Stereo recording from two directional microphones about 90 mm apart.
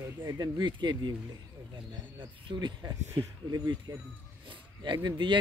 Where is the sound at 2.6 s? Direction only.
45° right (ahead or behind).